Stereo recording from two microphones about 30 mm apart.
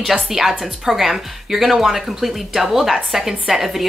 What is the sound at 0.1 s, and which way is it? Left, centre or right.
A woman's voice, centre.